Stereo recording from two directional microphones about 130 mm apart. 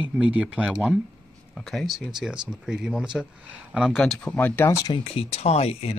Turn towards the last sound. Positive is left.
turn(degrees=50)  # may be behind; listen again after turning